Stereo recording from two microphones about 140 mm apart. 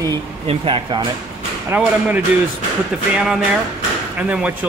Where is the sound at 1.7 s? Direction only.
15° right (ahead or behind).